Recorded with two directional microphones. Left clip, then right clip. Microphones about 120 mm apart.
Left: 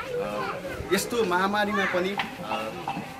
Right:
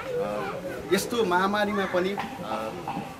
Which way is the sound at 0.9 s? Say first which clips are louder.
Right 1 dB; 5° right (ahead or behind).